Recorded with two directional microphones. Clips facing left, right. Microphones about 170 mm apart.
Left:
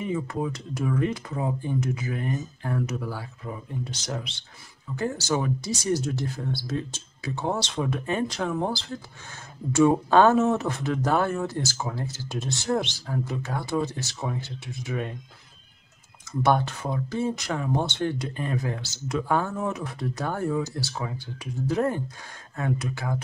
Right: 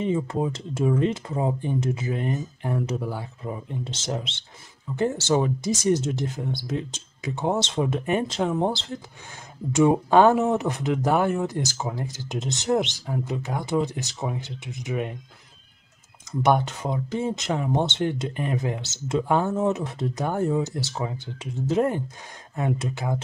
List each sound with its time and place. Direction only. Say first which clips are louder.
0.0 s speech: right 4 dB; 25° right (ahead or behind)
16.3 s speech: right 2 dB; 20° right (ahead or behind)